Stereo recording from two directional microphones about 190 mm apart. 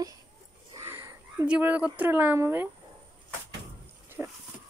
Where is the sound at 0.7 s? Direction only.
15° right (ahead or behind).